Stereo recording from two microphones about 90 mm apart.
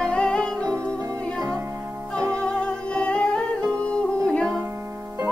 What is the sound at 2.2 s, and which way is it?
Music, 35° right (ahead or behind).